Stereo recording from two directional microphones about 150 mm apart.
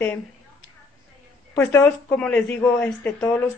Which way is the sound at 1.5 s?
15° left (ahead or behind).